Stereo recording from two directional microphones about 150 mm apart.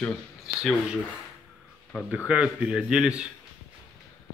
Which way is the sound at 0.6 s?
5° right (ahead or behind).